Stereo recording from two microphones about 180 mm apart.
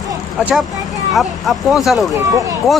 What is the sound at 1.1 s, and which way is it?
Speech, centre (ahead or behind).